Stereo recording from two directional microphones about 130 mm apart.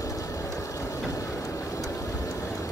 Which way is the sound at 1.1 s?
25° left (ahead or behind).